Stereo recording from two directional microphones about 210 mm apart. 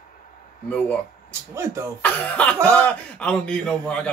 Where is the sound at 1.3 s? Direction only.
15° right (ahead or behind).